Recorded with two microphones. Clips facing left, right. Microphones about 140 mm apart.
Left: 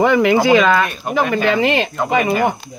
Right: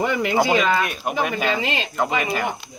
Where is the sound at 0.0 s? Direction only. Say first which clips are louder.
Left 7 dB; 90° left.